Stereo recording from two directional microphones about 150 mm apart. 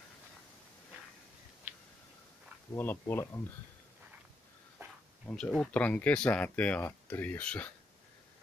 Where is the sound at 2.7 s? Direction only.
15° left (ahead or behind).